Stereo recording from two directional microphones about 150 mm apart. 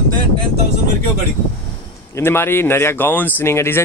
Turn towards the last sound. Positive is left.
turn(degrees=15)  # may be behind; listen again after turning